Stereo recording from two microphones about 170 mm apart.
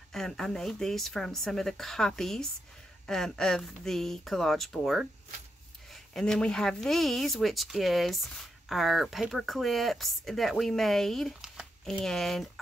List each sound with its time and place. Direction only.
0.1 s speech: 5° left (ahead or behind)
6.1 s speech: 5° left (ahead or behind)